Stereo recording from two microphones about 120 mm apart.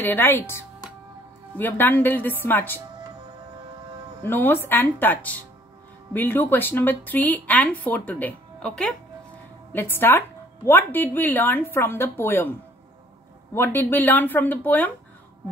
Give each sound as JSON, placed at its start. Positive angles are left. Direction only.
{"t": 0.0, "sound": "speech", "side_deg": 15}
{"t": 4.2, "sound": "speech", "side_deg": 20}
{"t": 13.6, "sound": "speech", "side_deg": 15}